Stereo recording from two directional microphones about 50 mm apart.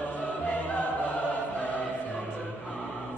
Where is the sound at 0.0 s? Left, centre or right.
Left.